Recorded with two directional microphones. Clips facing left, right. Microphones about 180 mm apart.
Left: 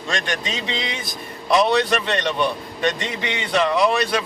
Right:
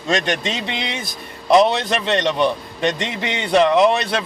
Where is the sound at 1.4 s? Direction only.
25° right (ahead or behind).